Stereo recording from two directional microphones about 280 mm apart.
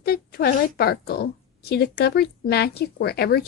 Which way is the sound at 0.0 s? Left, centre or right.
Left.